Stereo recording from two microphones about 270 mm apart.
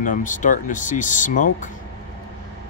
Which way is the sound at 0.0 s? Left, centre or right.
Left.